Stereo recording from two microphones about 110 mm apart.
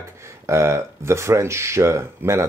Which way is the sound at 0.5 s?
25° right (ahead or behind).